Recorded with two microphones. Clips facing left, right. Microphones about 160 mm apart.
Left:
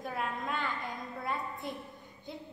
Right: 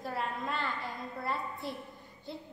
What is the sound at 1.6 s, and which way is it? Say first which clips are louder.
Speech: right 1 dB; 50° left (ahead or behind).